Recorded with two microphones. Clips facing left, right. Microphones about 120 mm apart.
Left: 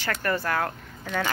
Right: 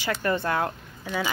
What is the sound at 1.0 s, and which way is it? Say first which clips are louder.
Speech: even; 10° right (ahead or behind).